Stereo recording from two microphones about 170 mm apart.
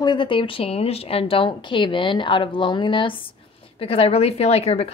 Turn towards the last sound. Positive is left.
turn(degrees=35)  # may be behind; listen again after turning